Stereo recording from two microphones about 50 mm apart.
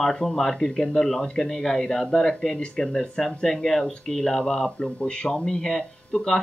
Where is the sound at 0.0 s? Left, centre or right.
Centre.